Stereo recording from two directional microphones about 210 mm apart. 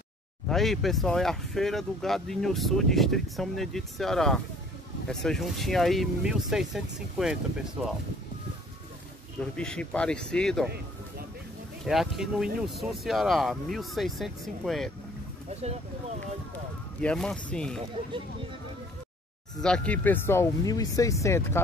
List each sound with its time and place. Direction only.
0.5 s speech: centre (ahead or behind)
9.4 s speech: 5° left (ahead or behind)
11.8 s speech: centre (ahead or behind)
17.0 s speech: 5° left (ahead or behind)
19.6 s speech: 5° left (ahead or behind)